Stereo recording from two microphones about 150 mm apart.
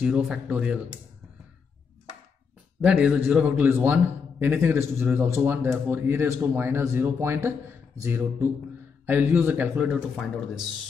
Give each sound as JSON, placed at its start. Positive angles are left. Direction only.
{"t": 0.0, "sound": "a man's voice", "side_deg": -5}
{"t": 2.8, "sound": "a man's voice", "side_deg": -5}
{"t": 9.9, "sound": "speech", "side_deg": 5}